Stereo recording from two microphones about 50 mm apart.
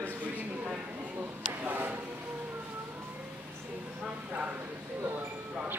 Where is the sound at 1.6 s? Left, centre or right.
Right.